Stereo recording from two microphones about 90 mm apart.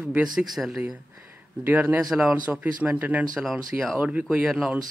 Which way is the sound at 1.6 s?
20° right (ahead or behind).